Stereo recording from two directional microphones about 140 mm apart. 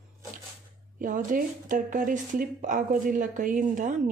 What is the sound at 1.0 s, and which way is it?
Speech, 75° right (ahead or behind).